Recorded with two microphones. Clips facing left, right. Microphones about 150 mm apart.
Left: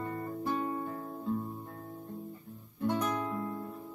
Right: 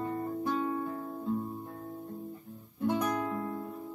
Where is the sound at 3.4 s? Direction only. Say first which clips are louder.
Right 1 dB; 25° right (ahead or behind).